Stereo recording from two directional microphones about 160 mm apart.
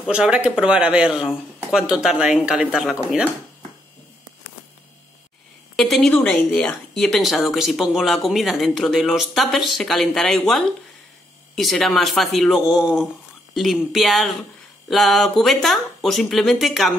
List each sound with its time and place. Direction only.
0.0 s a woman's voice: 5° right (ahead or behind)
5.8 s a woman's voice: 5° left (ahead or behind)